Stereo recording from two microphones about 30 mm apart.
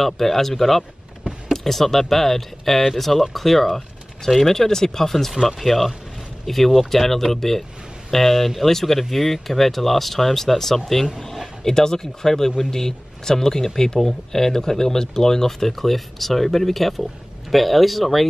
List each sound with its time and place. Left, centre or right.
0.0 s speech: centre
11.1 s a sound: centre
11.6 s speech: centre